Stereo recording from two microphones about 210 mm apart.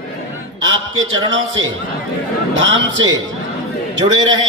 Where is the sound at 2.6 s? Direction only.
60° right (ahead or behind).